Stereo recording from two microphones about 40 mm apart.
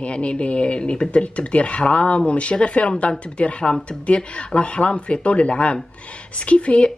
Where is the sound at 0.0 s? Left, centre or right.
Left.